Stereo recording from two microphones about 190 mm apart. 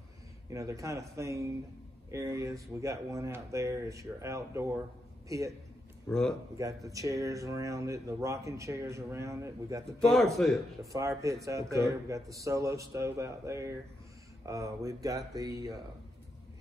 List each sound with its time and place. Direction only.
0.5 s speech: 15° right (ahead or behind)
6.0 s speech: 5° left (ahead or behind)
6.6 s speech: 15° right (ahead or behind)
9.9 s speech: centre (ahead or behind)
10.9 s speech: 15° right (ahead or behind)